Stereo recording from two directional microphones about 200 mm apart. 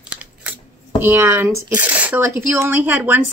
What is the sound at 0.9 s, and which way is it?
Speech, 10° right (ahead or behind).